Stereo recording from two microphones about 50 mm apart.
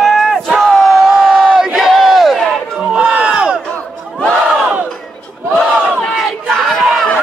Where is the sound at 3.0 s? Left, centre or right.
Right.